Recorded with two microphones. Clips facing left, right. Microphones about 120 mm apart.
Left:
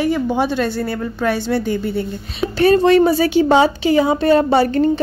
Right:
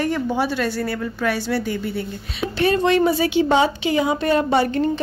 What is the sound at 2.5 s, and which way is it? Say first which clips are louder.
A woman's voice: left 6 dB; 40° left (ahead or behind).